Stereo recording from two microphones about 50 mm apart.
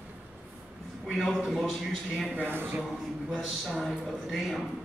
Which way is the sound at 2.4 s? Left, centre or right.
Right.